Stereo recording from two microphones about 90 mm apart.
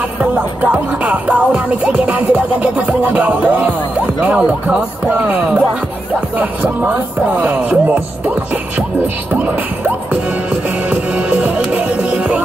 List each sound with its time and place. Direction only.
0.2 s music: 15° right (ahead or behind)